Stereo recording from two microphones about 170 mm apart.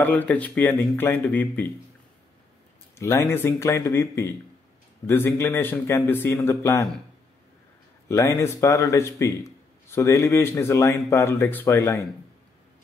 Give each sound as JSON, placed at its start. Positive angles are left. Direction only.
{"t": 0.0, "sound": "a man's voice", "side_deg": 10}
{"t": 3.0, "sound": "a man's voice", "side_deg": 20}
{"t": 8.1, "sound": "a man's voice", "side_deg": 20}